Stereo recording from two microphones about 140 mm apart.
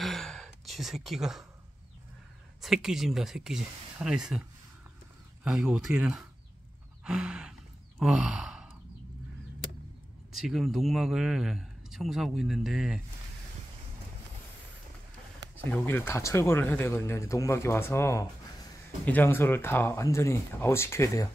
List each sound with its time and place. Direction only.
0.0 s a sound: centre (ahead or behind)
2.6 s a man's voice: centre (ahead or behind)
8.0 s sigh: 5° right (ahead or behind)
10.3 s a man's voice: 5° right (ahead or behind)
15.7 s speech: 15° left (ahead or behind)